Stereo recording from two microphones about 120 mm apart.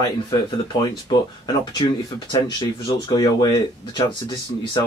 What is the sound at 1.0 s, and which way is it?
Speech, 40° left (ahead or behind).